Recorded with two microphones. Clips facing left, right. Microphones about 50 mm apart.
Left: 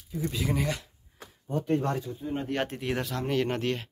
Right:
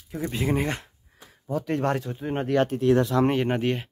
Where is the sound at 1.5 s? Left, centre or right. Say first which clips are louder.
Right 2 dB; right.